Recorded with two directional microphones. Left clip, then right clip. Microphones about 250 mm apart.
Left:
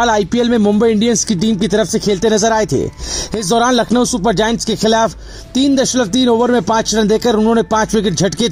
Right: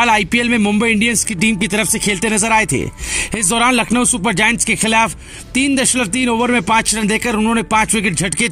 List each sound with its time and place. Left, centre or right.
0.0 s speech: right